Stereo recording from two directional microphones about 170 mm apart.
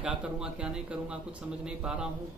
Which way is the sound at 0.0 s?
5° right (ahead or behind).